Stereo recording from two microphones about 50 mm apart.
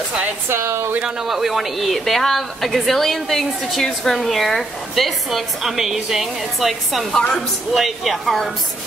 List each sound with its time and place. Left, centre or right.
0.7 s speech: right
1.2 s speech: centre